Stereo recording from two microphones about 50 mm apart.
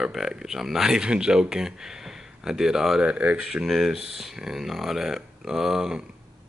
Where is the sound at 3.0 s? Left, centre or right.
Right.